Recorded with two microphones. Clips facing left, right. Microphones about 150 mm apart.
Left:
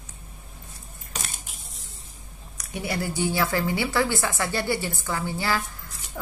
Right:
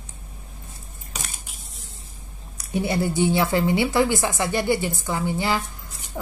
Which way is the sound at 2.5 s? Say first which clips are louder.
Right 6 dB; 25° right (ahead or behind).